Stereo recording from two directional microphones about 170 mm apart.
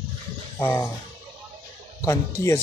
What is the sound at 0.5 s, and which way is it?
Speech, 15° left (ahead or behind).